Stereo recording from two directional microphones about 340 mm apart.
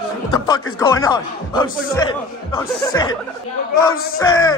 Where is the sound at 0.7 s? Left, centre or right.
Centre.